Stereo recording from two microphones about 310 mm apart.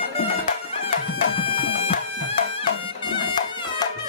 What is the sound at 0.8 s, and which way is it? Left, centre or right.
Music, centre.